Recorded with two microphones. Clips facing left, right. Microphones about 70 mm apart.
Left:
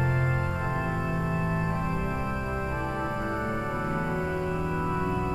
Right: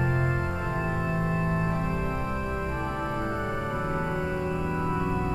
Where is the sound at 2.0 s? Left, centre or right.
Centre.